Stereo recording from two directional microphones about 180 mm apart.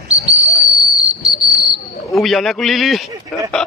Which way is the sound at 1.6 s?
Centre (ahead or behind).